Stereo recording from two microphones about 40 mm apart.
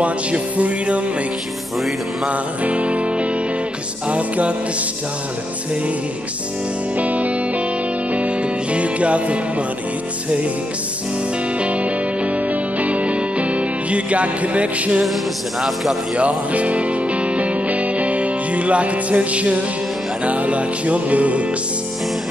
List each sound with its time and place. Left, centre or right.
0.0 s music: right
2.2 s music: right
7.0 s music: right
11.6 s music: right
15.6 s a man's voice: centre
16.2 s music: right